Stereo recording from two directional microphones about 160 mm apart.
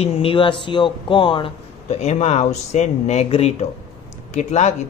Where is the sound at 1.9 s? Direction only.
45° left (ahead or behind).